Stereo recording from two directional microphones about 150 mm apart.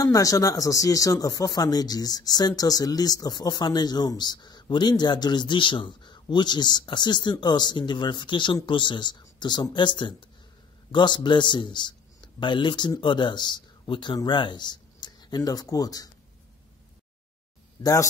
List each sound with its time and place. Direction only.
0.0 s a man's voice: 25° left (ahead or behind)